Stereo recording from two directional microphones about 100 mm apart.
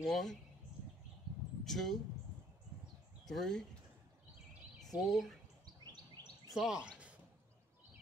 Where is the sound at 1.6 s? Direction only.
5° left (ahead or behind).